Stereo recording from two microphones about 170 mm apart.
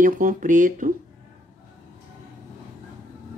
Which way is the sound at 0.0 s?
55° right (ahead or behind).